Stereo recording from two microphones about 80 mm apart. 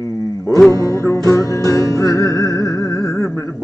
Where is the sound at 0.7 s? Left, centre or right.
Left.